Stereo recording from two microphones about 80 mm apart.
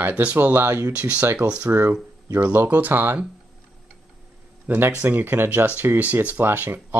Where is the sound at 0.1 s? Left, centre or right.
Centre; by 0.9 s right.